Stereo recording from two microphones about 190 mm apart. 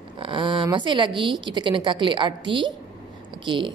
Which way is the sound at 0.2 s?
25° right (ahead or behind).